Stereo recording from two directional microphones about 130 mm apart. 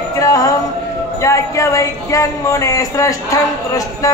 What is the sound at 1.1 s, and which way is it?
A man's voice, 25° left (ahead or behind).